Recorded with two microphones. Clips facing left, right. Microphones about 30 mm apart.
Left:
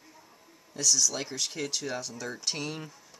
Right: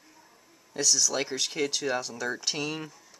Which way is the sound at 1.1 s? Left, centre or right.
Right.